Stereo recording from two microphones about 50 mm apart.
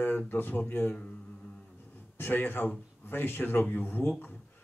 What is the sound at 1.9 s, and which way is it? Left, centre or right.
Speech, left.